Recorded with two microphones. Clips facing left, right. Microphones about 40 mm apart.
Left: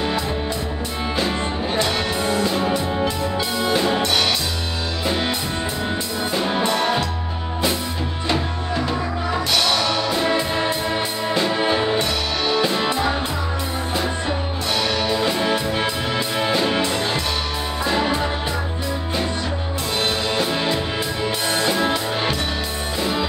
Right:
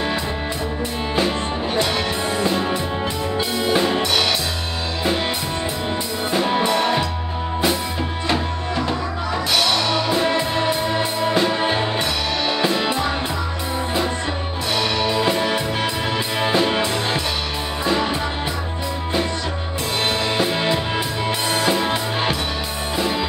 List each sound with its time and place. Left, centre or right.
1.8 s music: centre
3.3 s music: centre
16.5 s music: centre